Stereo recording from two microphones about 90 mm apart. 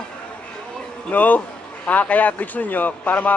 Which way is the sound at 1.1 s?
20° left (ahead or behind).